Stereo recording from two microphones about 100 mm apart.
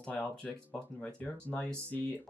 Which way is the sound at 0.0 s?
15° left (ahead or behind).